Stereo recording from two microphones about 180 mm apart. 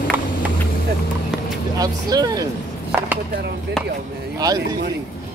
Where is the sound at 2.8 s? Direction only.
10° right (ahead or behind).